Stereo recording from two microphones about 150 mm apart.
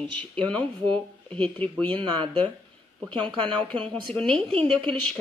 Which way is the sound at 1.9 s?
30° right (ahead or behind).